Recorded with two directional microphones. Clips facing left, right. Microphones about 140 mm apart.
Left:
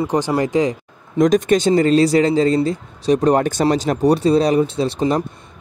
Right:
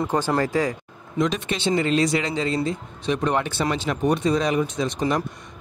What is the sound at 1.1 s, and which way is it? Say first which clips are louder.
Speech: left 10 dB; 45° left (ahead or behind).